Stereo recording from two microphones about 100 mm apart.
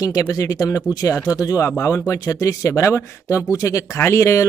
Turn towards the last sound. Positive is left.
turn(degrees=30)  # may be behind; listen again after turning